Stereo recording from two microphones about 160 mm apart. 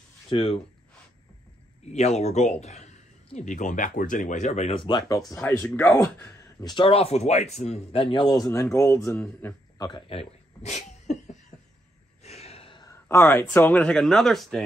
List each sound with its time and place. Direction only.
0.3 s speech: 35° left (ahead or behind)
1.9 s a man's voice: 45° left (ahead or behind)
5.0 s speech: 20° left (ahead or behind)
5.4 s speech: 5° left (ahead or behind)
6.6 s speech: 30° left (ahead or behind)
8.7 s speech: 15° left (ahead or behind)
9.8 s a sound: 30° left (ahead or behind); by 11.3 s 45° left (ahead or behind)
12.2 s gasp: 40° left (ahead or behind)
12.8 s speech: 15° left (ahead or behind)